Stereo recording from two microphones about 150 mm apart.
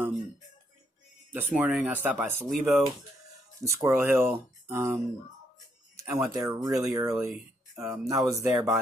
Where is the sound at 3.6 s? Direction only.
20° right (ahead or behind).